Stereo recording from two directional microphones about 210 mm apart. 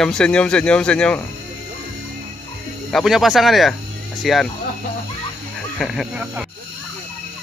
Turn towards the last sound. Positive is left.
turn(degrees=-5)  # may be behind; listen again after turning